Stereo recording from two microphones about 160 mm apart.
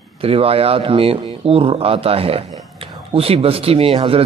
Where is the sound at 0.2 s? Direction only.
35° right (ahead or behind).